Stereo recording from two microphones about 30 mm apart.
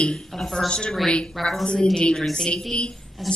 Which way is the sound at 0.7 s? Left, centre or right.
Left.